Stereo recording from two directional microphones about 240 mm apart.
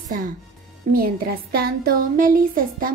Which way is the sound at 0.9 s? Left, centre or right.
Right.